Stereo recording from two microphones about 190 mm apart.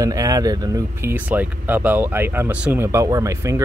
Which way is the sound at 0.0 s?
20° right (ahead or behind).